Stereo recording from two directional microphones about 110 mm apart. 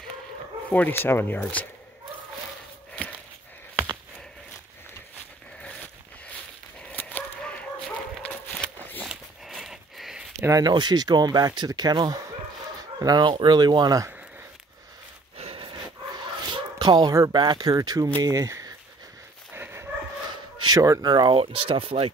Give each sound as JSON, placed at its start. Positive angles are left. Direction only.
{"t": 0.7, "sound": "speech", "side_deg": 15}
{"t": 5.6, "sound": "zipper", "side_deg": 10}
{"t": 6.8, "sound": "a sound", "side_deg": 15}
{"t": 8.2, "sound": "dog", "side_deg": 10}
{"t": 9.0, "sound": "a sound", "side_deg": -5}
{"t": 10.6, "sound": "speech", "side_deg": -40}
{"t": 15.3, "sound": "a sound", "side_deg": -60}
{"t": 16.4, "sound": "dog", "side_deg": -45}
{"t": 17.3, "sound": "speech", "side_deg": -45}
{"t": 19.5, "sound": "dog", "side_deg": -20}
{"t": 20.6, "sound": "speech", "side_deg": -30}